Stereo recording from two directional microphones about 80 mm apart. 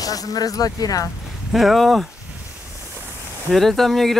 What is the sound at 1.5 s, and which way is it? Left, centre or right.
Speech, centre.